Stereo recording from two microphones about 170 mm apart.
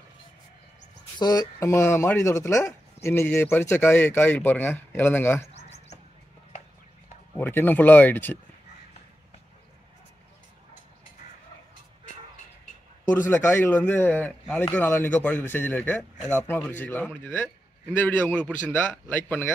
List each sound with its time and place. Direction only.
1.1 s speech: 25° left (ahead or behind)
5.5 s bird: 40° left (ahead or behind)
7.3 s speech: 10° left (ahead or behind)
13.1 s speech: 10° left (ahead or behind)